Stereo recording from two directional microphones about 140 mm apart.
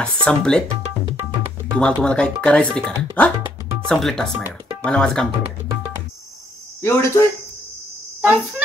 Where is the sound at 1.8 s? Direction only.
5° left (ahead or behind).